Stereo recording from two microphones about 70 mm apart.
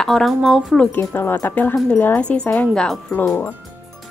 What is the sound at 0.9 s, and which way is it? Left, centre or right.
A woman's voice, left.